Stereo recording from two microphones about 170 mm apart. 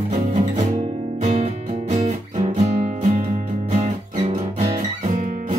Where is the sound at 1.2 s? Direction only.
40° right (ahead or behind).